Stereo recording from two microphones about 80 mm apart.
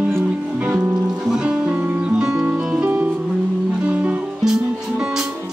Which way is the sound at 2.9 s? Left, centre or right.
Right.